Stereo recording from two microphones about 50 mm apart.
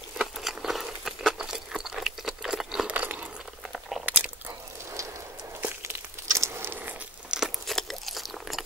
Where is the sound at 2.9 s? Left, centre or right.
Right.